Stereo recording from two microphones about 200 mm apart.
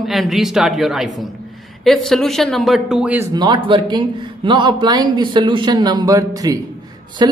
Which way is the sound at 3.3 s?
20° right (ahead or behind).